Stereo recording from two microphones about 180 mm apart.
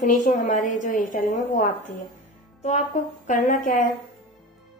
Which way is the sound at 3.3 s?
45° left (ahead or behind).